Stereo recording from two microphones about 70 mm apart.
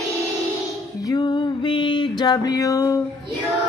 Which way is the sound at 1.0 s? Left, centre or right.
Left.